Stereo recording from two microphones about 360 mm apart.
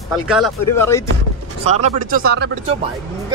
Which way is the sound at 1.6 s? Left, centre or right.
Right.